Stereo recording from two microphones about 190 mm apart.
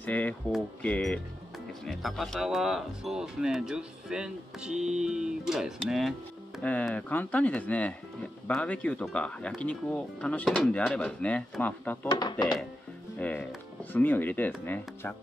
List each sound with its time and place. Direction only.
0.0 s speech: 10° left (ahead or behind)
12.1 s speech: 25° left (ahead or behind)
13.2 s speech: 5° left (ahead or behind)